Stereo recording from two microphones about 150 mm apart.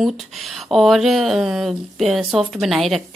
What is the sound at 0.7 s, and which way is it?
Speech, centre (ahead or behind).